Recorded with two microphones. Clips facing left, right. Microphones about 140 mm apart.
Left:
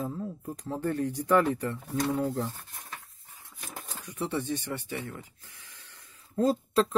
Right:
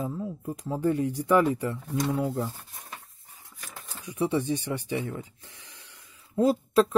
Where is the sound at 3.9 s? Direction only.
10° right (ahead or behind).